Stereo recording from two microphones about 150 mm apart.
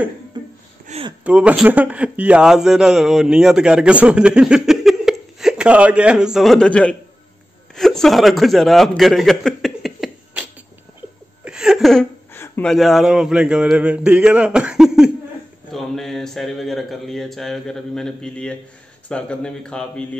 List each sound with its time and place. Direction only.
0.3 s music: 30° right (ahead or behind)
0.9 s a sound: 50° right (ahead or behind)
1.2 s a man's voice: 10° right (ahead or behind)
11.4 s laughter: 5° right (ahead or behind)
12.6 s a man's voice: centre (ahead or behind)